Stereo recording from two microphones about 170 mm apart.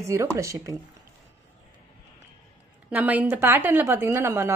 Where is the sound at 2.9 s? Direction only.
10° right (ahead or behind).